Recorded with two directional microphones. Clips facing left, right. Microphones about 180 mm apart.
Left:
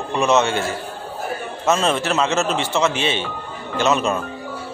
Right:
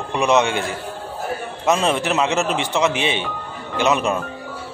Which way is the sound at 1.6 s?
15° right (ahead or behind).